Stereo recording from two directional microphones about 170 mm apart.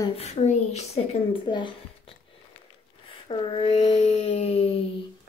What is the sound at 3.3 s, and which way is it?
A woman's voice, 35° left (ahead or behind).